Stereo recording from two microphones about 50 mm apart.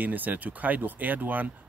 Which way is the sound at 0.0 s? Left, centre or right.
Right.